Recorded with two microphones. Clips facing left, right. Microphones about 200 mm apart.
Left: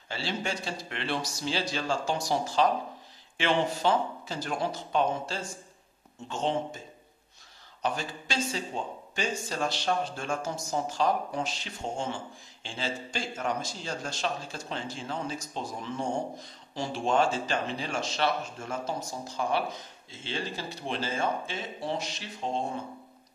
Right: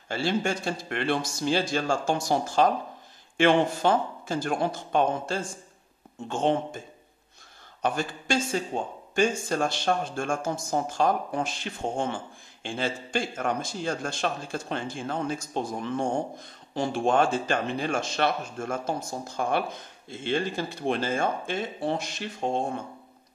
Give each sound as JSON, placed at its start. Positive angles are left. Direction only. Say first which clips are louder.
{"t": 0.1, "sound": "speech", "louder": "right 6 dB", "side_deg": -50}
{"t": 7.8, "sound": "speech", "louder": "right 4 dB", "side_deg": -50}